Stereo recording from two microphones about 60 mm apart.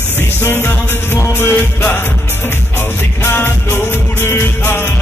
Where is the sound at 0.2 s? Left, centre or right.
Left.